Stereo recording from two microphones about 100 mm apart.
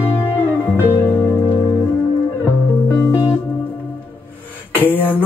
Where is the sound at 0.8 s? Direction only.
20° left (ahead or behind).